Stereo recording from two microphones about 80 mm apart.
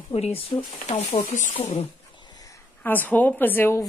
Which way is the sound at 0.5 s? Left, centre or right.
Left.